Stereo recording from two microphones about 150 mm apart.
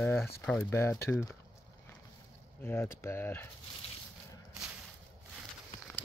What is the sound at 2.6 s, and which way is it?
Speech, 15° left (ahead or behind).